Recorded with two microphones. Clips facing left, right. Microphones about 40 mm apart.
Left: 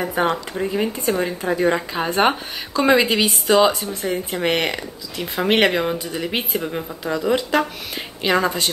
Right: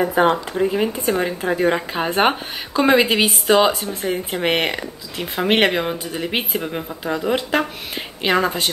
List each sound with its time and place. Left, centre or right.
0.6 s a woman's voice: centre